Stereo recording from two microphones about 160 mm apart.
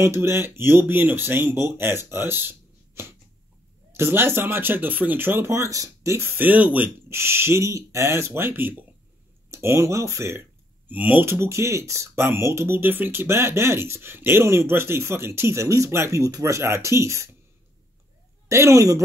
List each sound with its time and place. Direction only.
0.0 s speech: 15° right (ahead or behind)
18.5 s speech: 20° right (ahead or behind)